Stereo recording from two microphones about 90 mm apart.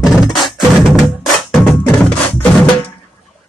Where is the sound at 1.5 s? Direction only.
5° left (ahead or behind).